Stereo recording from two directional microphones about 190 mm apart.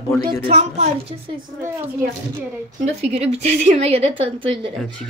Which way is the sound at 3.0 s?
35° right (ahead or behind).